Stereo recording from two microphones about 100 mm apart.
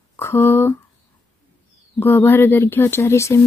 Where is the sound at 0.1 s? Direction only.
25° left (ahead or behind).